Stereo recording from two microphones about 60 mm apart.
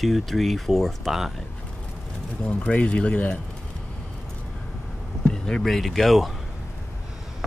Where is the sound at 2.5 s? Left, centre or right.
Left.